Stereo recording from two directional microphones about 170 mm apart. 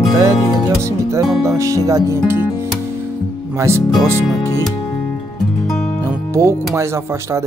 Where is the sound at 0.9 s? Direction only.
15° right (ahead or behind).